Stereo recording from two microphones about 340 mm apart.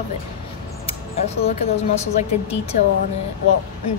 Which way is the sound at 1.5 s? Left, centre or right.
Centre.